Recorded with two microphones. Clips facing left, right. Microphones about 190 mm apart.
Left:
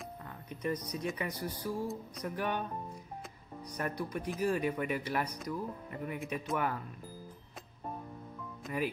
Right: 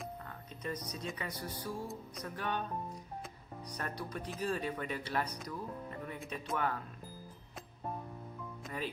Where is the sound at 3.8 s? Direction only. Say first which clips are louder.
Left 5 dB; 10° left (ahead or behind).